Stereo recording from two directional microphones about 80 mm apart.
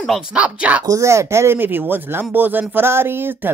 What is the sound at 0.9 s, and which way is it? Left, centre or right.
Speech, right.